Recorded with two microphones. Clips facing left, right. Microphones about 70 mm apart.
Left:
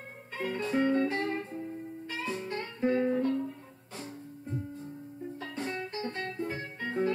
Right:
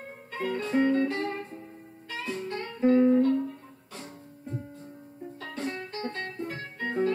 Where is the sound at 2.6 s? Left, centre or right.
Centre.